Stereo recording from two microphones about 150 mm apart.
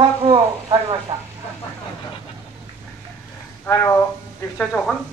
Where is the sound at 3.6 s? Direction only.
15° left (ahead or behind).